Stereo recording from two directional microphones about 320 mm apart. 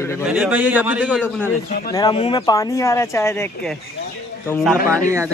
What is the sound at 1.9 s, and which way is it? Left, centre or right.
A man's voice, centre.